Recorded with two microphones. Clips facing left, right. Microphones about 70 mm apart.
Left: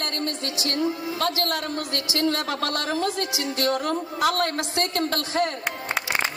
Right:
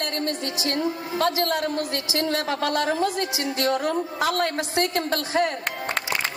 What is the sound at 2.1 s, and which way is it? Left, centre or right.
A woman's voice, right.